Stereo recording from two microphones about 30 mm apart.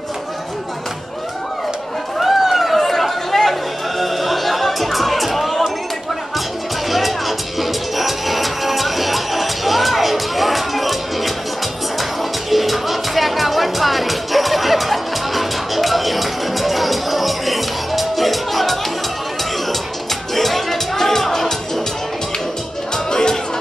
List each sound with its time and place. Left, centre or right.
2.1 s run: centre
4.0 s music: centre
6.9 s music: centre
20.3 s music: centre
23.0 s music: left